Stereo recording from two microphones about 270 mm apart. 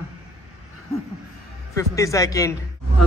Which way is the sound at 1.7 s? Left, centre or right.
Centre.